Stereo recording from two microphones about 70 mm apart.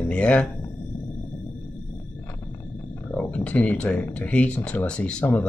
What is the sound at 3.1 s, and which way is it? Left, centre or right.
Speech, left.